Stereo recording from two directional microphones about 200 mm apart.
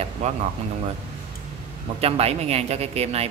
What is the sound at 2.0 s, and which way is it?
Speech, 30° right (ahead or behind).